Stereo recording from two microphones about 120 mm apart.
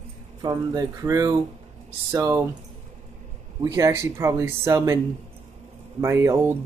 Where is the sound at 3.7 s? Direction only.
25° right (ahead or behind).